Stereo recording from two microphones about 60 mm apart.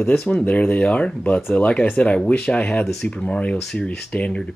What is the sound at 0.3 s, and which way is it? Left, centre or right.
Speech, left.